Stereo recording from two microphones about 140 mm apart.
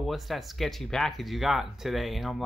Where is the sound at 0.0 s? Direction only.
Centre (ahead or behind).